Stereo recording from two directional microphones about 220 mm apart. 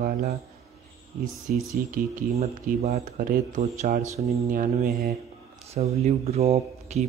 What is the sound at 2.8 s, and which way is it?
Speech, 45° right (ahead or behind).